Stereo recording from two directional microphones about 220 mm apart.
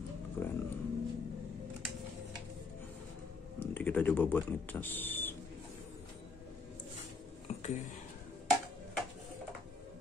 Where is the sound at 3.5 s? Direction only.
5° left (ahead or behind).